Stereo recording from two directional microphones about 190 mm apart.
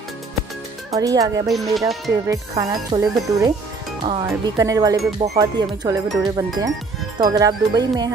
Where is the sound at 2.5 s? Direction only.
25° right (ahead or behind).